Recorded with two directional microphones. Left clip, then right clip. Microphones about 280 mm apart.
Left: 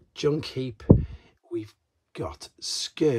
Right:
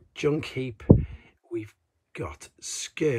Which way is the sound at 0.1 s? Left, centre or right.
Centre.